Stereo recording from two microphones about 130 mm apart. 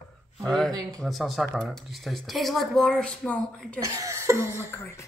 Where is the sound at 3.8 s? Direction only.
25° right (ahead or behind).